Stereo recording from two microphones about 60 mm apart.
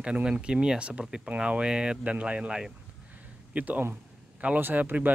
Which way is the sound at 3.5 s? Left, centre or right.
Right.